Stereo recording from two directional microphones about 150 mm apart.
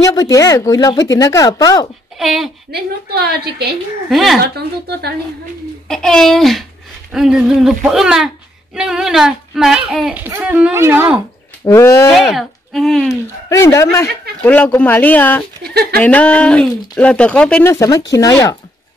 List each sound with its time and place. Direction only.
0.0 s speech: 25° left (ahead or behind)
2.1 s speech: centre (ahead or behind)
2.7 s a woman's voice: 90° right
4.1 s speech: centre (ahead or behind)
4.4 s a woman's voice: 90° right
5.9 s speech: 5° left (ahead or behind); by 11.1 s 15° right (ahead or behind)
11.6 s speech: 20° left (ahead or behind)
12.1 s speech: centre (ahead or behind)
13.1 s speech: 20° left (ahead or behind)
15.6 s a woman's voice: 90° right
16.0 s speech: 10° left (ahead or behind)
17.6 s speech: 20° left (ahead or behind)